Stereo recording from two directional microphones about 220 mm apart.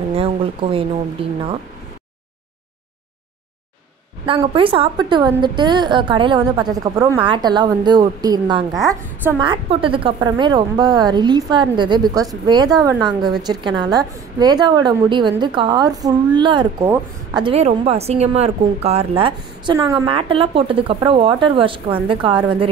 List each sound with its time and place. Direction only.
0.1 s a woman's voice: 25° right (ahead or behind)
4.3 s a woman's voice: 25° right (ahead or behind)